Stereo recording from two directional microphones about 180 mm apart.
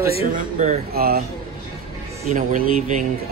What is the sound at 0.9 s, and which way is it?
Speech, 55° right (ahead or behind).